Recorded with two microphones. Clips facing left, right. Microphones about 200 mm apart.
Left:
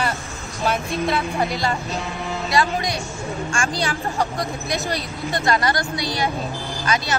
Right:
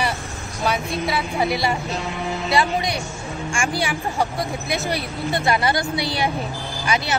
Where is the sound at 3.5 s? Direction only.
15° right (ahead or behind).